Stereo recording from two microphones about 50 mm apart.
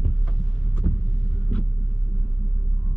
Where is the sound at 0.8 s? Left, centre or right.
Left.